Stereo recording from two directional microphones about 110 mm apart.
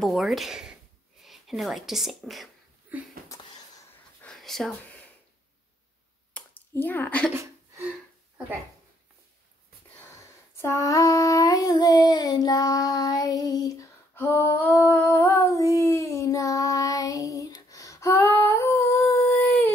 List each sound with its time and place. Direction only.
0.0 s speech: centre (ahead or behind)
2.9 s speech: 15° right (ahead or behind)
4.4 s speech: centre (ahead or behind)
4.8 s a sound: 15° left (ahead or behind)
6.4 s a sound: 10° left (ahead or behind)
6.7 s a woman's voice: 15° left (ahead or behind)
9.9 s female singing: 25° left (ahead or behind)
14.1 s female singing: 20° left (ahead or behind)